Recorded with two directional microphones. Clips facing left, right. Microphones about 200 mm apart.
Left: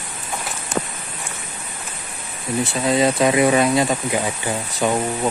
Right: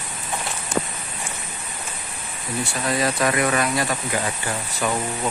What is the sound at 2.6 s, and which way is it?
Speech, 20° left (ahead or behind).